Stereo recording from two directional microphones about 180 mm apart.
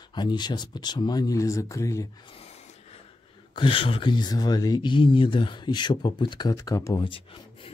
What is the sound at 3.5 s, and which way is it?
Speech, 30° left (ahead or behind).